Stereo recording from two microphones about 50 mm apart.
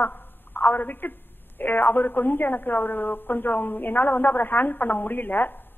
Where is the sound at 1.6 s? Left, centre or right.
Left.